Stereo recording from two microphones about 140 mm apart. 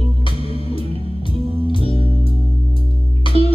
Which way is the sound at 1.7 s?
40° left (ahead or behind).